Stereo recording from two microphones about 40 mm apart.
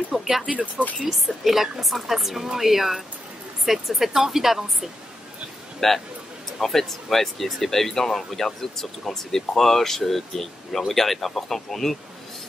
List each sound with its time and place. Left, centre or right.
0.1 s speech: centre
0.4 s speech: right
1.0 s a woman's voice: centre
5.8 s speech: centre